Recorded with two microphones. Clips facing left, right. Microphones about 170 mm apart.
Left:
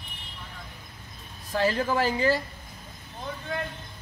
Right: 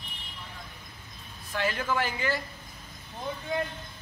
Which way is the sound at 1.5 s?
35° left (ahead or behind).